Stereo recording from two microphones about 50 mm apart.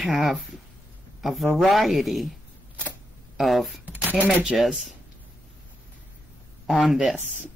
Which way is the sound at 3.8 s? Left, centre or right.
Right.